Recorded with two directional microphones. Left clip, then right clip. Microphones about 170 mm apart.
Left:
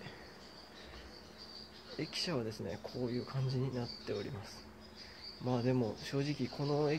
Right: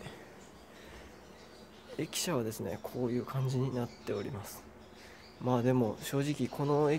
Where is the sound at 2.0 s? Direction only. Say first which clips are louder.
Right 4 dB; 25° right (ahead or behind).